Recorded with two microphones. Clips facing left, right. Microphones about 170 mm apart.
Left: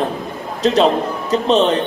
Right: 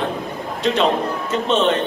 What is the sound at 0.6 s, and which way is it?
Speech, 35° left (ahead or behind).